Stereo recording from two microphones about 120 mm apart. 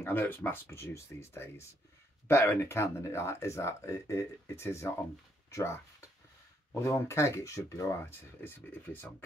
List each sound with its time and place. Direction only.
0.0 s speech: 15° left (ahead or behind)